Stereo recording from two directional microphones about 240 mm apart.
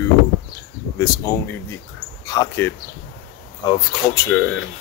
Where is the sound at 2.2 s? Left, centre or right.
Centre.